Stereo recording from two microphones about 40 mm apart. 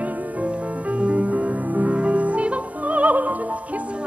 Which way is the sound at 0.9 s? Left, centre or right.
Right.